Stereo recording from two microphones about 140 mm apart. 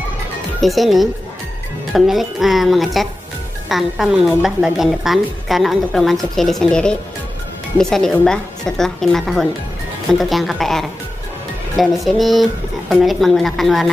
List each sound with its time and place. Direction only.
0.6 s a woman's voice: centre (ahead or behind)